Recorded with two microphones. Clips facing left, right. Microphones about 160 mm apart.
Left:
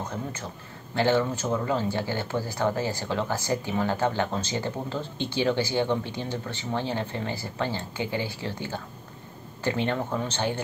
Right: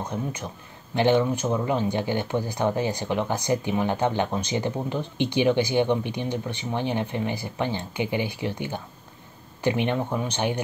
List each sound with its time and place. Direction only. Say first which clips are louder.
0.1 s speech: right 3 dB; 15° right (ahead or behind)